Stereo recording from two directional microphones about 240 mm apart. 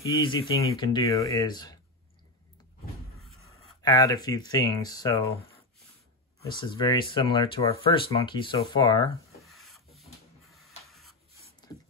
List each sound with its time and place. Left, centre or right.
0.0 s speech: centre
3.8 s speech: centre
6.4 s speech: centre
9.4 s rub: centre
10.8 s printer: centre
11.6 s a sound: centre